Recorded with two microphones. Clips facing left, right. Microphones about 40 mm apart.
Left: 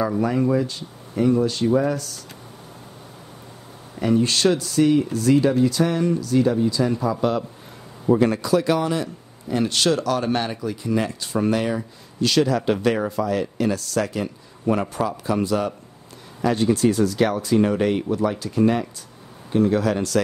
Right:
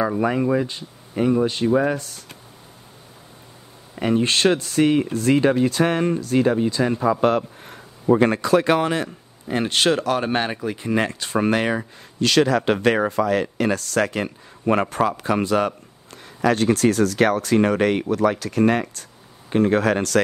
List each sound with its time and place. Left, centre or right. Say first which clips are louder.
0.2 s speech: even; right
4.0 s a man's voice: even; right
16.3 s speech: right 1 dB; right
19.5 s a man's voice: right 1 dB; right